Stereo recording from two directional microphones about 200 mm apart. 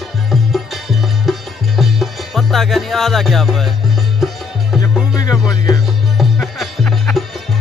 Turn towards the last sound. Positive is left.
turn(degrees=0)  # may be behind; listen again after turning